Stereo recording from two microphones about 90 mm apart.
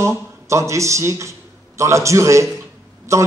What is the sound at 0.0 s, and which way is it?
A man's voice, 30° right (ahead or behind).